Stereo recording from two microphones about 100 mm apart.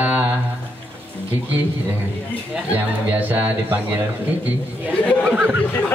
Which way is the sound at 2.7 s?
20° right (ahead or behind).